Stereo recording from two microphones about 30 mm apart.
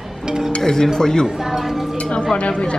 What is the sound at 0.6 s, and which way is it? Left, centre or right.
Speech, centre.